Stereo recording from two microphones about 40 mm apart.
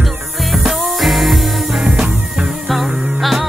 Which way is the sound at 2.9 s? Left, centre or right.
Right.